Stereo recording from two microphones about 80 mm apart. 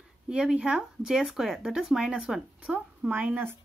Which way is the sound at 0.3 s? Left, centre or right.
Centre.